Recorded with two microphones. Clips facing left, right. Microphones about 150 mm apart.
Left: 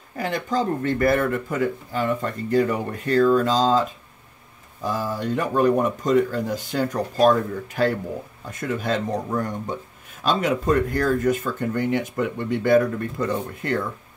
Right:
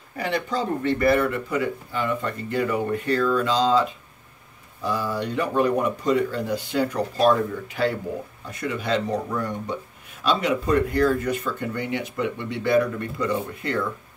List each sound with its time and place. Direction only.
0.2 s speech: 45° left (ahead or behind)
4.8 s speech: 45° left (ahead or behind)